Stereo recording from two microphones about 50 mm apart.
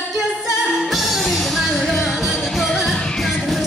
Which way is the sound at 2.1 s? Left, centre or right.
Centre.